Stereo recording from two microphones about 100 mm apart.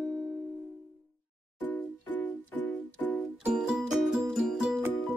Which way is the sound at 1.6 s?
15° left (ahead or behind).